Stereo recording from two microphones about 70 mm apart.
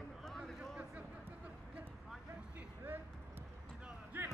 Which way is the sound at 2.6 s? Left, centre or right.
Right.